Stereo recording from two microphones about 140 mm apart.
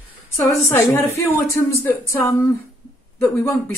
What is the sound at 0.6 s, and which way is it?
Speech, 20° left (ahead or behind).